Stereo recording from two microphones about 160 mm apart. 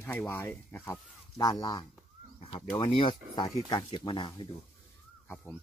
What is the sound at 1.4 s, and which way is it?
Speech, 25° left (ahead or behind).